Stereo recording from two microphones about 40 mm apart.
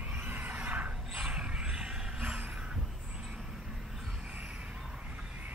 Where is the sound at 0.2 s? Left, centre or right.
Right.